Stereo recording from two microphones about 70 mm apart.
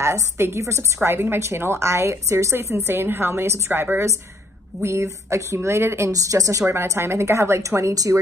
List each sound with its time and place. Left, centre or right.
0.0 s a woman's voice: right
1.0 s a woman's voice: right
4.8 s a woman's voice: right
6.7 s a woman's voice: right